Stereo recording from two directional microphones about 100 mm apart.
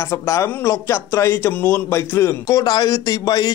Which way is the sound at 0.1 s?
30° left (ahead or behind).